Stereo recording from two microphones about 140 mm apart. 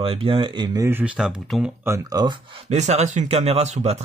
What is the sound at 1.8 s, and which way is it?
Speech, 25° right (ahead or behind).